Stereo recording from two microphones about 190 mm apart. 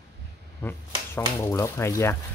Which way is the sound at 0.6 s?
15° left (ahead or behind).